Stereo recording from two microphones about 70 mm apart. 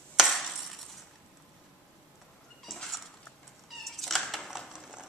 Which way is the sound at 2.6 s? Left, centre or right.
Centre.